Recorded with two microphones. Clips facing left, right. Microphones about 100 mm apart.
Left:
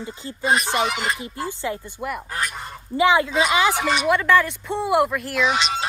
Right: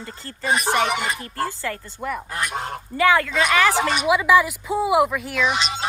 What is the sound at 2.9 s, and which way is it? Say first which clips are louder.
Speech: left 1 dB; 20° left (ahead or behind).